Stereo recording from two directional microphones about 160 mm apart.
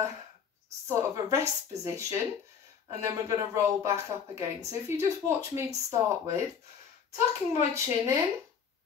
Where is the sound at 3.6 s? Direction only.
20° right (ahead or behind).